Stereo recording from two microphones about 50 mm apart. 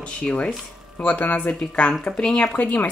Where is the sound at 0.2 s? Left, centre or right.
Left.